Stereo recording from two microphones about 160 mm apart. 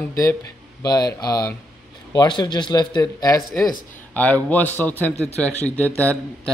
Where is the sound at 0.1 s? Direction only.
20° left (ahead or behind).